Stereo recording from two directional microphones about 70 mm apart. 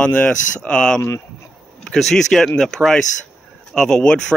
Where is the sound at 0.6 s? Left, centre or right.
Centre.